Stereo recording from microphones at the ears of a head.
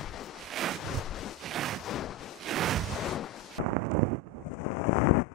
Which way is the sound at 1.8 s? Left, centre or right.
Left.